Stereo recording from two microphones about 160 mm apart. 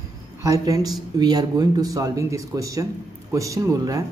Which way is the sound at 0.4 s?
20° right (ahead or behind).